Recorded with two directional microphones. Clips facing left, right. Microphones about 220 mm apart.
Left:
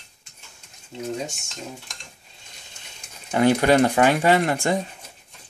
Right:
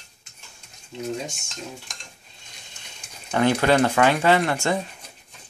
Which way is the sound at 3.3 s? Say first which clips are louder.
Left 2 dB; 20° left (ahead or behind).